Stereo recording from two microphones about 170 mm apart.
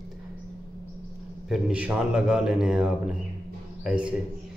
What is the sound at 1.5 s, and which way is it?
A man's voice, 5° right (ahead or behind).